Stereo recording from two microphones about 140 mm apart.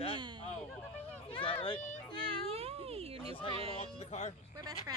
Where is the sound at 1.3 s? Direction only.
40° left (ahead or behind).